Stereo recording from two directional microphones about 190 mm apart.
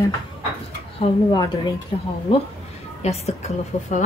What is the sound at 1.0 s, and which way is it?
Speech, 20° left (ahead or behind).